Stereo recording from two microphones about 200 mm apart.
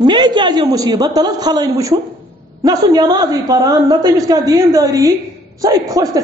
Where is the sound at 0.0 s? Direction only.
20° right (ahead or behind).